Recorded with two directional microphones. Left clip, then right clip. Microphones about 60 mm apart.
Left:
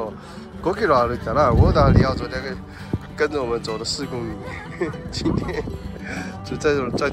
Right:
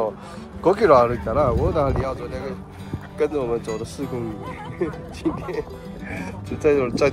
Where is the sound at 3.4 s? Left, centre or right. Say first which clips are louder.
Left 1 dB; centre.